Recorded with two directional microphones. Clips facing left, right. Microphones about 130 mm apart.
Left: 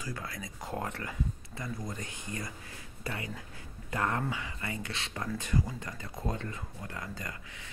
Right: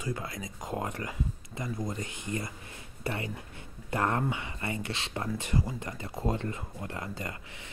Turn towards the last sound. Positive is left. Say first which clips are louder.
# right 3 dB
turn(degrees=-30)  # may be behind; listen again after turning